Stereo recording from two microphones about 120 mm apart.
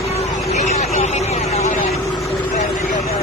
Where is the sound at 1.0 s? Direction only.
70° left (ahead or behind).